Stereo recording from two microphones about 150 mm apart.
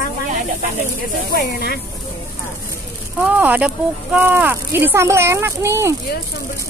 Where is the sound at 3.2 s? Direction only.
10° right (ahead or behind).